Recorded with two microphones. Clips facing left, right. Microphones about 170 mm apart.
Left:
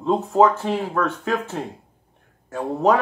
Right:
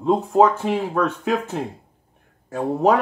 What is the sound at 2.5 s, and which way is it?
Speech, 5° right (ahead or behind).